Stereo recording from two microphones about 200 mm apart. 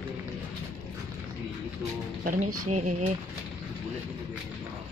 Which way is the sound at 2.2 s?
40° right (ahead or behind).